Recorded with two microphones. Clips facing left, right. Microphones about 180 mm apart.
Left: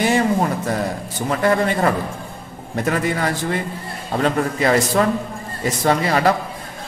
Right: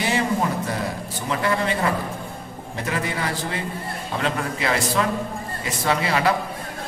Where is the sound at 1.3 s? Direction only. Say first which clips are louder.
Left 5 dB; 50° left (ahead or behind).